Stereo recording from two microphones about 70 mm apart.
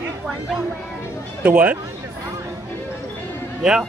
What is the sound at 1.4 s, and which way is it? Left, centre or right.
Speech, right.